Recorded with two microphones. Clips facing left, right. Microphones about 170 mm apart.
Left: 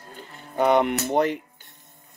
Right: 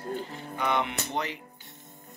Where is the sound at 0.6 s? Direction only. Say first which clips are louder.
Left 9 dB; 50° left (ahead or behind).